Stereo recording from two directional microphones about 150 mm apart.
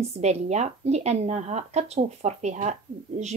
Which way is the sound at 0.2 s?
50° right (ahead or behind).